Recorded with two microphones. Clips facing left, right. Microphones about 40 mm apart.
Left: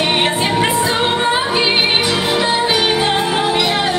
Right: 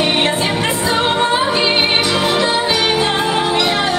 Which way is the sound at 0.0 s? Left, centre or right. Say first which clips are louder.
Even; centre.